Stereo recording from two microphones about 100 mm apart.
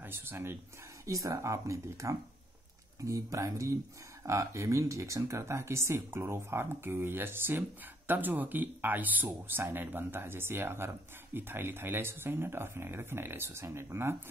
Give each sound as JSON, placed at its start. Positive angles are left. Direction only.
{"t": 0.0, "sound": "speech", "side_deg": -20}
{"t": 1.0, "sound": "speech", "side_deg": -35}